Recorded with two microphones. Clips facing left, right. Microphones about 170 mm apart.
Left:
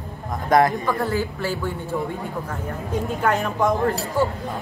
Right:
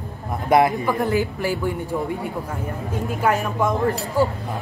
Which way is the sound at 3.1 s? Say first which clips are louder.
Right 2 dB; centre (ahead or behind).